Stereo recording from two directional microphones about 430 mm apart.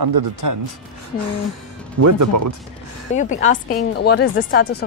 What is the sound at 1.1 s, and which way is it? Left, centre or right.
Speech, right.